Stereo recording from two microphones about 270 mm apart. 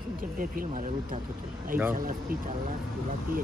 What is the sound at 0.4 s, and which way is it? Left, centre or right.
Speech, right.